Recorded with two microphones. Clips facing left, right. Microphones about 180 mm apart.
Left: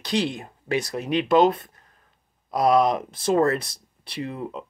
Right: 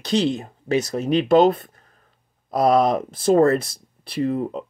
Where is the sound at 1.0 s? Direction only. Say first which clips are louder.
Right 4 dB; 40° right (ahead or behind).